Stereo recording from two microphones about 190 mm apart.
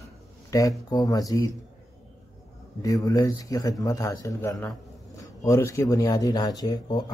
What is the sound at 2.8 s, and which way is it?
Speech, 20° left (ahead or behind).